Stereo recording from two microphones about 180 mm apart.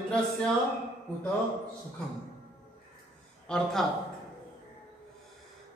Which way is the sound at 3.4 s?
5° left (ahead or behind).